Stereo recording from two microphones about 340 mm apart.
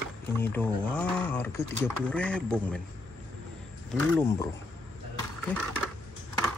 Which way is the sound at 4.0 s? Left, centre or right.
Centre.